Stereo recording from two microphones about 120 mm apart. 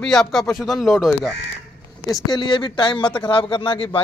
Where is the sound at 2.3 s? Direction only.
40° left (ahead or behind).